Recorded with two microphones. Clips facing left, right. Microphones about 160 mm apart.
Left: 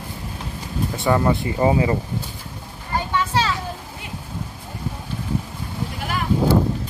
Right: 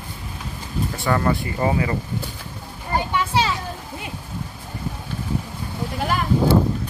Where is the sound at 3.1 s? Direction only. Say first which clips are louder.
Left 1 dB; 10° right (ahead or behind).